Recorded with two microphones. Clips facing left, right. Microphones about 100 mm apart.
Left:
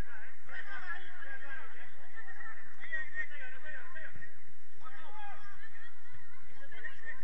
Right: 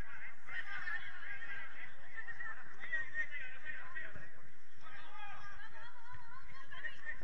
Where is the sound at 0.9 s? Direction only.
45° left (ahead or behind).